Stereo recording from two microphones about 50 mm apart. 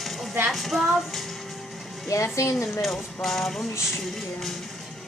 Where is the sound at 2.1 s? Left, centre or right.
Left.